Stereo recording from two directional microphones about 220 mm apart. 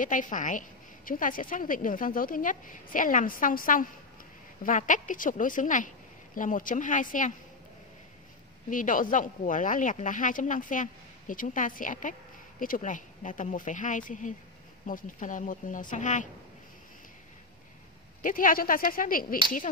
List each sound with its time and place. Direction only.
0.0 s speech: 35° left (ahead or behind)
8.6 s speech: 35° left (ahead or behind)
18.2 s speech: 40° left (ahead or behind)